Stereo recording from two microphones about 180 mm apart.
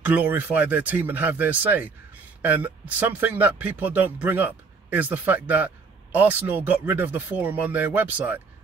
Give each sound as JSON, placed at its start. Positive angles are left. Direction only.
{"t": 0.0, "sound": "speech", "side_deg": -10}